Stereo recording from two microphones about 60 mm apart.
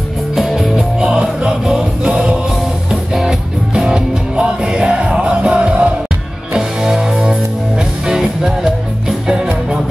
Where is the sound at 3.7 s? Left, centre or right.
Centre.